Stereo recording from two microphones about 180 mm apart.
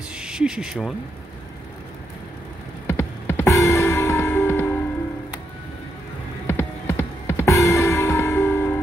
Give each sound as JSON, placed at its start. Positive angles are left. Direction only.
{"t": 0.1, "sound": "speech", "side_deg": -5}
{"t": 2.9, "sound": "music", "side_deg": 10}
{"t": 6.4, "sound": "music", "side_deg": 10}